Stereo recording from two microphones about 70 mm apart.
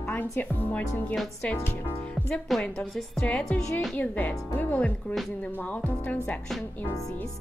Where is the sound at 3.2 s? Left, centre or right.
Centre.